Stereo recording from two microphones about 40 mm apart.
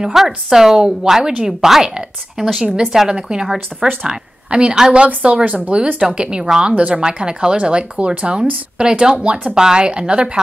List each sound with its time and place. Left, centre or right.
0.0 s a woman's voice: centre
2.6 s a woman's voice: centre; by 5.8 s right
6.1 s speech: right